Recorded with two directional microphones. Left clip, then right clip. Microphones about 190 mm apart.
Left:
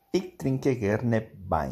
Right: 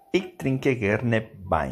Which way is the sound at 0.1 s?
Centre (ahead or behind).